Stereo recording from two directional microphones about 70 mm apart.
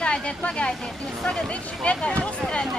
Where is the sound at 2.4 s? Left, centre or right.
Centre.